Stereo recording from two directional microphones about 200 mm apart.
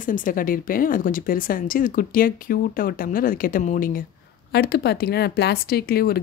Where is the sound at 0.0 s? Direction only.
40° left (ahead or behind).